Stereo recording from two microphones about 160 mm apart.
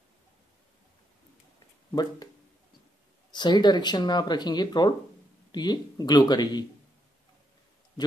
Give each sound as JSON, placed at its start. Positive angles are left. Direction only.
{"t": 3.3, "sound": "speech", "side_deg": 25}